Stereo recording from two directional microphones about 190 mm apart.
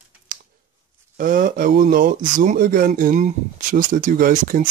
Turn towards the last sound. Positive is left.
turn(degrees=-45)  # may be behind; listen again after turning